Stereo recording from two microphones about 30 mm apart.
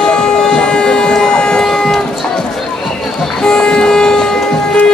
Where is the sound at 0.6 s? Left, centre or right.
Left.